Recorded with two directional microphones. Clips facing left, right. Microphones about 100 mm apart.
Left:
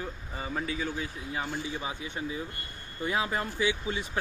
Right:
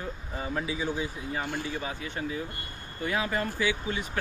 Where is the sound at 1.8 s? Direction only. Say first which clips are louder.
Right 1 dB; 20° left (ahead or behind).